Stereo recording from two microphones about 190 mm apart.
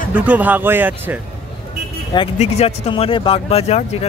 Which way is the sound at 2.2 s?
35° left (ahead or behind).